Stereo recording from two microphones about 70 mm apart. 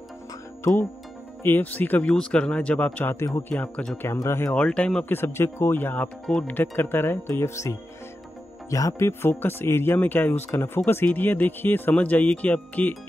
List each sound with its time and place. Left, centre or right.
1.4 s speech: left
4.2 s speech: left
4.5 s speech: centre
5.0 s speech: left
9.3 s speech: left